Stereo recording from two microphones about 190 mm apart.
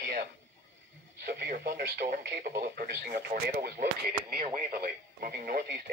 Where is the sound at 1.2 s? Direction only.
45° right (ahead or behind).